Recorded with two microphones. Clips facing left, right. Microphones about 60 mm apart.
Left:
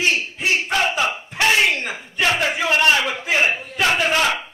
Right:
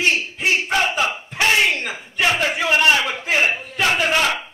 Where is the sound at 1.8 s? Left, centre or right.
Centre.